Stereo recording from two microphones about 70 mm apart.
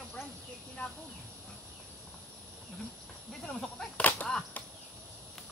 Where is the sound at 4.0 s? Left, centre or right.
Left.